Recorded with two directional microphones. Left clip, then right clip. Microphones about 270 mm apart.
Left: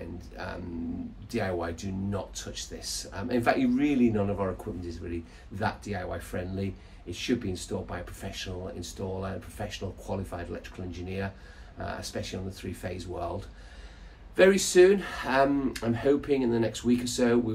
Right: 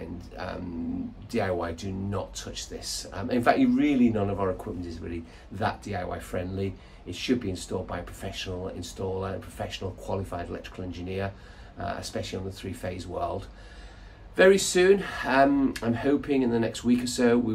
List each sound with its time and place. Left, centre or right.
0.4 s speech: centre
14.3 s speech: centre